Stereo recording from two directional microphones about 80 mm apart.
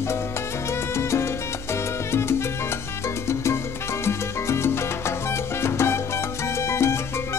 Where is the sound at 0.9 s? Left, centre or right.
Left.